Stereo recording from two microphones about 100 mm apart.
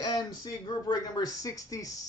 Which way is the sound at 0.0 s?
40° left (ahead or behind).